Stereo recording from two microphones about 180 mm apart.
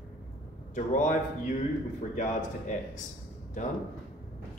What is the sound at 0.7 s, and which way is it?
Speech, 45° left (ahead or behind).